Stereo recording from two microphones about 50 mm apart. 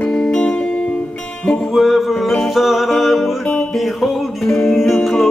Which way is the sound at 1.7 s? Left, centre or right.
Centre.